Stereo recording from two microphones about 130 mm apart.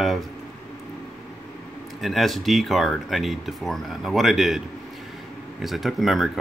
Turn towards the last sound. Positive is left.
turn(degrees=0)  # may be behind; listen again after turning